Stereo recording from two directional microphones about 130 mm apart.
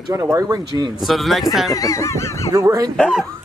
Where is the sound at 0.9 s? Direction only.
Centre (ahead or behind).